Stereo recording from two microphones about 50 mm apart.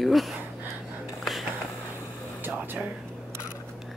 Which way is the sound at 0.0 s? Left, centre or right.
Centre.